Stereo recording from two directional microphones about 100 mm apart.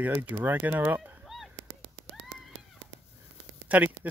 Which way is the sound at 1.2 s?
Centre (ahead or behind).